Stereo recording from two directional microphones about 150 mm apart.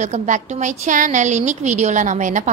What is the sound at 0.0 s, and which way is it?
A woman's voice, 55° right (ahead or behind).